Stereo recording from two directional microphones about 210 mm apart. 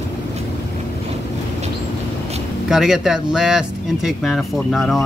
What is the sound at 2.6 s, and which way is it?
Speech, 5° right (ahead or behind).